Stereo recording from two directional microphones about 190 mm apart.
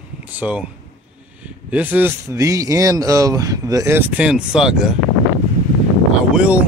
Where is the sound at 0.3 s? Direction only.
10° right (ahead or behind).